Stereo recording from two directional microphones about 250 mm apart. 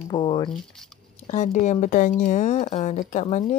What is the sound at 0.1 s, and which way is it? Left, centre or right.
Speech, centre.